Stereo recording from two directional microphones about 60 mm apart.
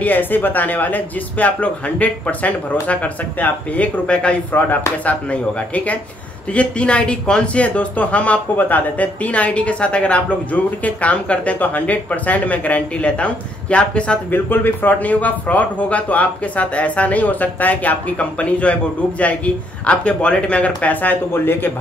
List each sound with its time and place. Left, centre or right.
0.0 s speech: left
4.6 s speech: left
6.5 s speech: left
14.3 s speech: left
21.3 s speech: left